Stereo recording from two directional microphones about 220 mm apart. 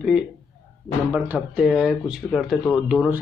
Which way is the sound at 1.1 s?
5° right (ahead or behind).